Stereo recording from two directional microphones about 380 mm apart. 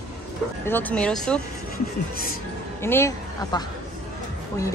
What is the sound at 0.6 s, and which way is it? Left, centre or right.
Speech, centre.